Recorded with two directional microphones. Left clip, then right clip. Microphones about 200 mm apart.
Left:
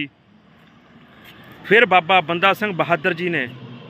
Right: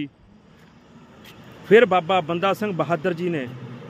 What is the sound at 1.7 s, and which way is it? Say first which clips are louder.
Speech: left 2 dB; 10° right (ahead or behind).